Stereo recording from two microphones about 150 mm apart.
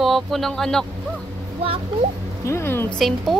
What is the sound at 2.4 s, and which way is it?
Speech, 15° left (ahead or behind).